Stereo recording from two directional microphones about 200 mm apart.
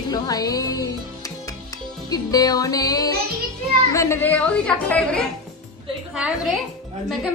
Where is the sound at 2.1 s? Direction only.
20° left (ahead or behind).